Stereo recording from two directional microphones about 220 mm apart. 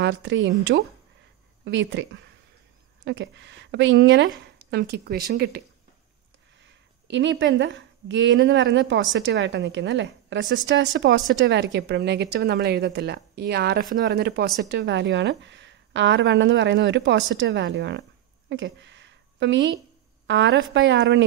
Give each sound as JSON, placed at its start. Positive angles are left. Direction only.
{"t": 0.0, "sound": "speech", "side_deg": -55}
{"t": 3.1, "sound": "speech", "side_deg": -55}
{"t": 6.6, "sound": "speech", "side_deg": -55}
{"t": 18.5, "sound": "a sound", "side_deg": -55}
{"t": 20.2, "sound": "speech", "side_deg": -55}